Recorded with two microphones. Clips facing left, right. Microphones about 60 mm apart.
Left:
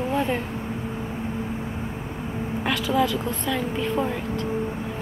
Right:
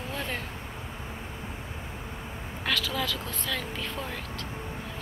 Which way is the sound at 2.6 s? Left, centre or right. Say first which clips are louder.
Left 7 dB; left.